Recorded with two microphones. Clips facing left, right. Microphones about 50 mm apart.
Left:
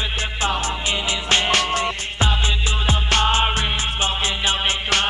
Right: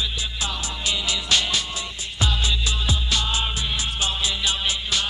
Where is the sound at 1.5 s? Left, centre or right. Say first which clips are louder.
Left 8 dB; left.